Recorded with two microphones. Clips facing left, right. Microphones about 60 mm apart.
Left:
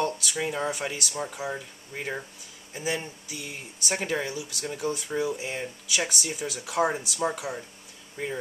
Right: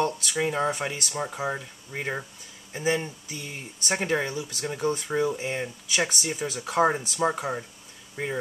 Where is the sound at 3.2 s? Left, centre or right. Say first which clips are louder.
Right 1 dB; right.